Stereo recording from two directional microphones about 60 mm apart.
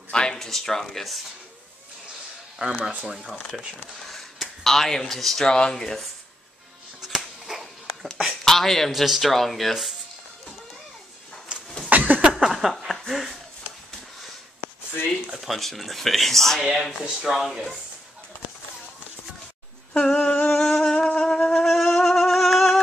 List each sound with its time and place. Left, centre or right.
0.1 s speech: centre
2.7 s speech: right
4.1 s speech: centre
7.0 s music: centre
8.0 s a sound: centre
8.5 s speech: centre
11.5 s a sound: centre
11.9 s a sound: right
12.4 s a sound: centre
15.3 s speech: centre
19.9 s humming: centre
20.5 s music: centre